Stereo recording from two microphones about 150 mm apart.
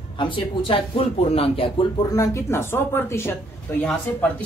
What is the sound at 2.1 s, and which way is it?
Speech, 20° left (ahead or behind).